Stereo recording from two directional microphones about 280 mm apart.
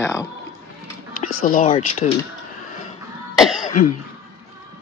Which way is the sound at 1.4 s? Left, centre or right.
Left.